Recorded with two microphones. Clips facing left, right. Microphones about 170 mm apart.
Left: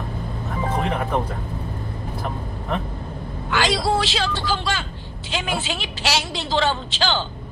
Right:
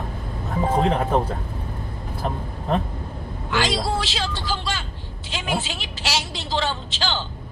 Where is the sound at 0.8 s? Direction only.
30° right (ahead or behind).